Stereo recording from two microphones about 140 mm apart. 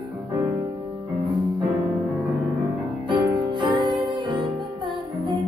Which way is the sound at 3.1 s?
35° right (ahead or behind).